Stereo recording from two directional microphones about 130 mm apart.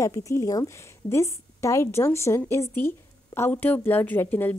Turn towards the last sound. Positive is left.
turn(degrees=15)  # may be behind; listen again after turning